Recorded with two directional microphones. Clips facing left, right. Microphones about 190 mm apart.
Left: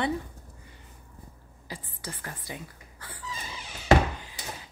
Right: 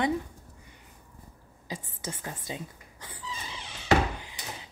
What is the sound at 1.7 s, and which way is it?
Speech, 20° right (ahead or behind).